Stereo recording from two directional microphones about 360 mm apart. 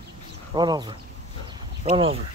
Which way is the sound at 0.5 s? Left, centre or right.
Centre.